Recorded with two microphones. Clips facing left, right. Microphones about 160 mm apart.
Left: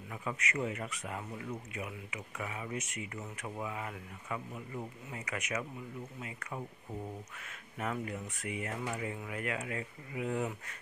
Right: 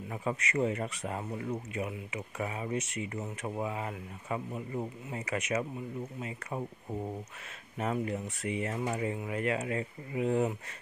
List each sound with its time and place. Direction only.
0.1 s speech: 35° right (ahead or behind)
7.7 s speech: 25° right (ahead or behind)